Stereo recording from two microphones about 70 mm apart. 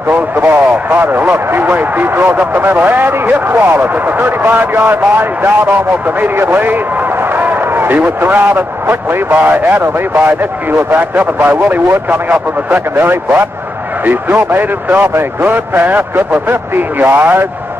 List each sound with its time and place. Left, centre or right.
0.1 s a man's voice: right